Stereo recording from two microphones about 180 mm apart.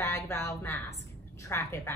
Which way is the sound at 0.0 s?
15° left (ahead or behind).